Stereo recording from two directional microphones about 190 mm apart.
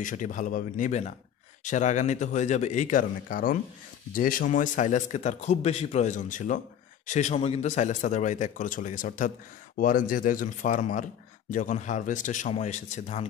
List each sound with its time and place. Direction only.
0.0 s a man's voice: 40° left (ahead or behind)